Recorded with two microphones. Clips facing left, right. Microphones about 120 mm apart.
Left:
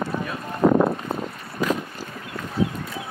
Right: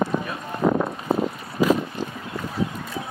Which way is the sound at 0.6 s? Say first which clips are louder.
Left 3 dB; 45° left (ahead or behind).